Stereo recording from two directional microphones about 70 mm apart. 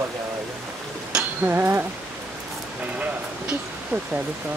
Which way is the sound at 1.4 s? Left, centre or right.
Right.